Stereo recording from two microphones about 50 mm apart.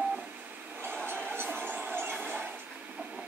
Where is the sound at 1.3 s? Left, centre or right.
Right.